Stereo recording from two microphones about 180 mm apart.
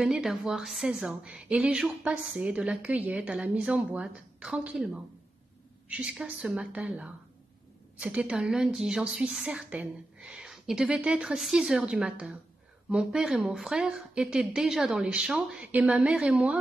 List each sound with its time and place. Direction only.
0.0 s a woman's voice: centre (ahead or behind)
5.9 s a woman's voice: 5° right (ahead or behind)